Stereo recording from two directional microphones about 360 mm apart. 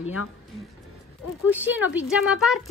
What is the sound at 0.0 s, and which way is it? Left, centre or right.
Speech, left.